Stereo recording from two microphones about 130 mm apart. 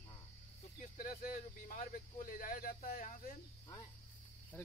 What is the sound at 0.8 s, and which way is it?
Speech, 90° left.